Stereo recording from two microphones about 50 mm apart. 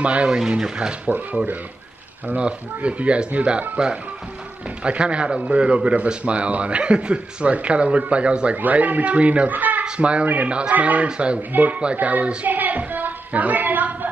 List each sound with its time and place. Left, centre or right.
0.0 s a man's voice: right
1.0 s a man's voice: right
9.5 s a sound: right
9.8 s a man's voice: right
11.1 s a man's voice: right
12.4 s a sound: right